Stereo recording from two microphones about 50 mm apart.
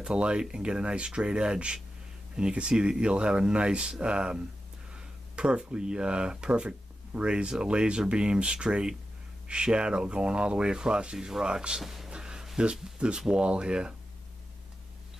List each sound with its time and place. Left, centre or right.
0.0 s speech: centre
12.1 s a sound: centre
13.2 s speech: centre